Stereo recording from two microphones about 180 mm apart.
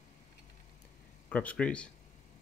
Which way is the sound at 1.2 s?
10° left (ahead or behind).